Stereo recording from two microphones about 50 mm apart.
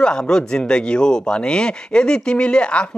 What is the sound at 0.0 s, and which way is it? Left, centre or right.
Speech, centre.